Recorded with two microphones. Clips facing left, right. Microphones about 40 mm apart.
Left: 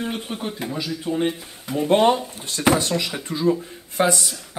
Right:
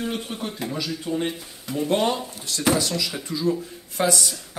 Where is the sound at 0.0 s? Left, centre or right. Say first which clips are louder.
Left 1 dB; centre.